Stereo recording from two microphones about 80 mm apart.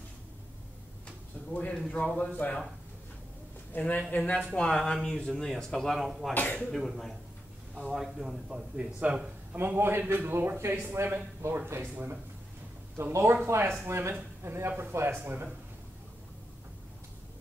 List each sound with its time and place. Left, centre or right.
1.0 s a sound: centre
2.1 s speech: centre
3.7 s speech: left; by 6.3 s centre
6.3 s speech: centre
6.7 s a man's voice: centre
9.6 s a man's voice: right
12.9 s speech: right